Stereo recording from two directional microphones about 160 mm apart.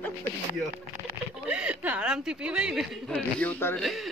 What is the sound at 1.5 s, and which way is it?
A woman's voice, 5° right (ahead or behind).